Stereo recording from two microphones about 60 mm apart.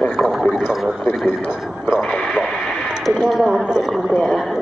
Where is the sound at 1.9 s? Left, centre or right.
Centre.